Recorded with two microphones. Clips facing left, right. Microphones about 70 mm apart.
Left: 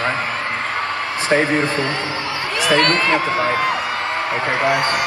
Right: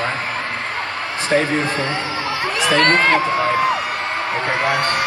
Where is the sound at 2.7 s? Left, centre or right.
Right.